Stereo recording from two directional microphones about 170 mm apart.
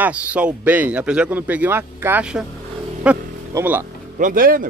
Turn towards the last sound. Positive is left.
turn(degrees=-55)  # may be behind; listen again after turning